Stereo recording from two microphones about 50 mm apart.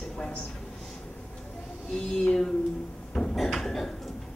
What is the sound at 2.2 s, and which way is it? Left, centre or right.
Speech, centre.